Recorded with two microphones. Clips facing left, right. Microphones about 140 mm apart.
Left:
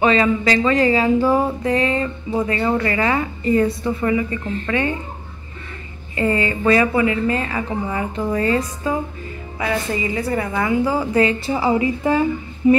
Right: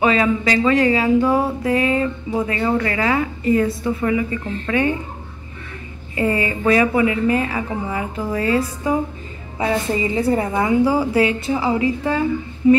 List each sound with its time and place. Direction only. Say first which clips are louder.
0.0 s a woman's voice: left 1 dB; 5° right (ahead or behind)
6.1 s a woman's voice: even; 10° right (ahead or behind)
8.8 s a woman's voice: right 2 dB; 15° right (ahead or behind)
11.4 s speech: even; 5° left (ahead or behind)